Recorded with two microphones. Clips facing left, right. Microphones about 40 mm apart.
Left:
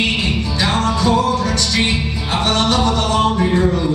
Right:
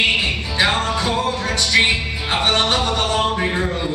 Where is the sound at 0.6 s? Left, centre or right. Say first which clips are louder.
Even; right.